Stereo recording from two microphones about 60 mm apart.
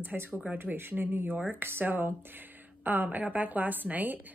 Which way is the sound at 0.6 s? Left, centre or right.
Right.